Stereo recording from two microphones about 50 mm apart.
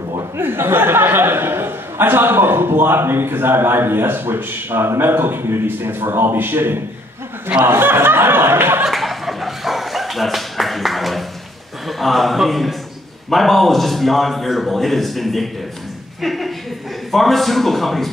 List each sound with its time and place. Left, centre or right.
0.4 s speech: right
7.6 s a sound: right
8.8 s dog: centre
12.0 s a man's voice: centre